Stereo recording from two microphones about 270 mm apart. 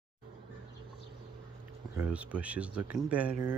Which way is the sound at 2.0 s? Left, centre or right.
Centre.